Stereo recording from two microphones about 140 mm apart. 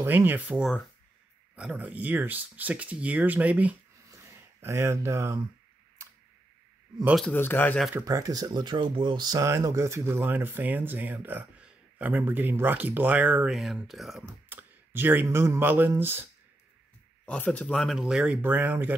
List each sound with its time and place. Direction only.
0.0 s speech: 15° right (ahead or behind)
4.1 s a sound: 20° right (ahead or behind)
7.3 s speech: 15° left (ahead or behind)
8.0 s speech: 25° right (ahead or behind); by 14.2 s centre (ahead or behind)
14.2 s speech: 15° right (ahead or behind)
17.3 s speech: 10° left (ahead or behind); by 18.9 s 10° right (ahead or behind)